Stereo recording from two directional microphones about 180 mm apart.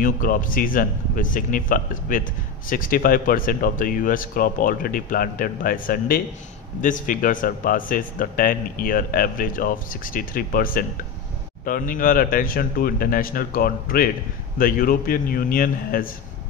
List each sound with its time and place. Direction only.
0.0 s a man's voice: 50° left (ahead or behind)